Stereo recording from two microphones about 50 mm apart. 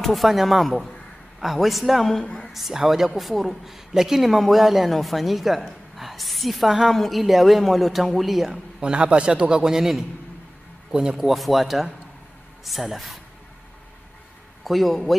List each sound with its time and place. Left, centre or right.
0.0 s a man's voice: centre
8.7 s a man's voice: right
11.2 s speech: centre
14.6 s speech: centre